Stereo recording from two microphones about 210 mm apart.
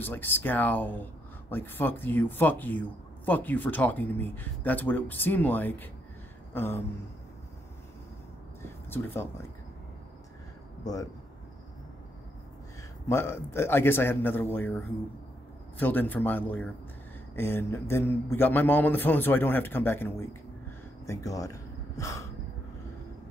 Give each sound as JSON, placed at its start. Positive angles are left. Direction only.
{"t": 0.0, "sound": "a man's voice", "side_deg": 10}
{"t": 6.5, "sound": "a sound", "side_deg": 10}
{"t": 8.6, "sound": "speech", "side_deg": 10}
{"t": 10.8, "sound": "speech", "side_deg": 15}
{"t": 13.1, "sound": "a man's voice", "side_deg": 10}
{"t": 21.0, "sound": "gasp", "side_deg": 15}